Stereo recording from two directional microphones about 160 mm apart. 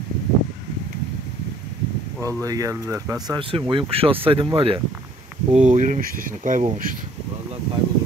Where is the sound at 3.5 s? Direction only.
30° right (ahead or behind).